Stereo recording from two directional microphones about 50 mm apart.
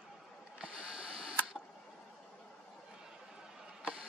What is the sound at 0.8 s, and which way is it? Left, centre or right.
Camera, centre.